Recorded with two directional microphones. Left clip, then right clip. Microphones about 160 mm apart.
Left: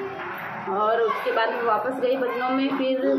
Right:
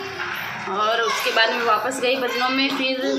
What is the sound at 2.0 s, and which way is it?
A woman's voice, 15° right (ahead or behind).